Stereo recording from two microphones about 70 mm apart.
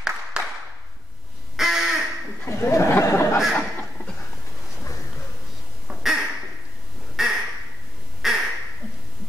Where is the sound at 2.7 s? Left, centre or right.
Left.